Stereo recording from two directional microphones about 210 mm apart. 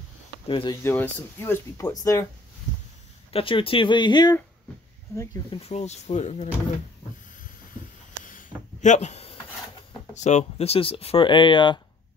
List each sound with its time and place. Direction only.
0.5 s speech: 25° left (ahead or behind)
0.8 s speech: 10° left (ahead or behind)
3.3 s speech: 25° left (ahead or behind)
5.6 s speech: 30° left (ahead or behind)
8.2 s a sound: 40° left (ahead or behind)
10.1 s speech: 35° left (ahead or behind)